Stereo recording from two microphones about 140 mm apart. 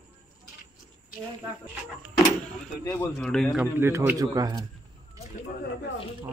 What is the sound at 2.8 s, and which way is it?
Speech, 25° left (ahead or behind).